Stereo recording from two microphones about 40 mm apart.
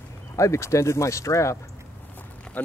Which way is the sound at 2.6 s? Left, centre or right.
Left.